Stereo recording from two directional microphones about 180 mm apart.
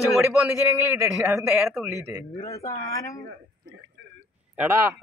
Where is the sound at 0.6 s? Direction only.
15° right (ahead or behind).